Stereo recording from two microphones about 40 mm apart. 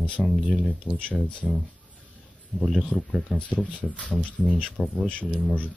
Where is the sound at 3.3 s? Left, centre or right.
Left.